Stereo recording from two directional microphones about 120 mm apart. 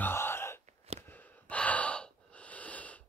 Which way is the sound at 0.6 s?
60° right (ahead or behind).